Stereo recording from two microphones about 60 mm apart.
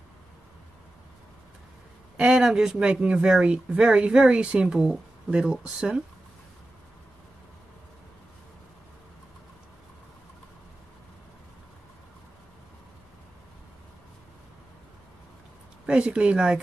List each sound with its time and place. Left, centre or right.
2.1 s speech: centre
15.9 s speech: centre